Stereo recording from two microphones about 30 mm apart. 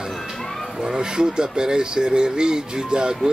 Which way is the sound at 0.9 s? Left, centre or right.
Right.